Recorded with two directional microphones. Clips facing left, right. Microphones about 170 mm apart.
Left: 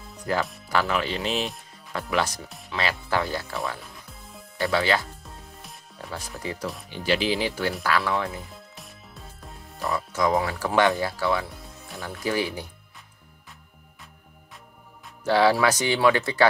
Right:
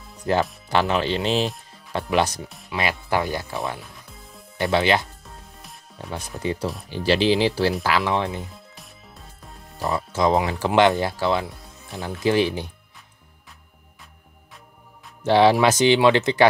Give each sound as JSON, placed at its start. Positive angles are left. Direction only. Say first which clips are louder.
{"t": 0.3, "sound": "speech", "louder": "right 5 dB", "side_deg": -25}
{"t": 6.1, "sound": "speech", "louder": "right 6 dB", "side_deg": -20}
{"t": 8.7, "sound": "music", "louder": "left 1 dB", "side_deg": 0}
{"t": 9.8, "sound": "speech", "louder": "right 3 dB", "side_deg": -25}
{"t": 15.2, "sound": "speech", "louder": "right 4 dB", "side_deg": -20}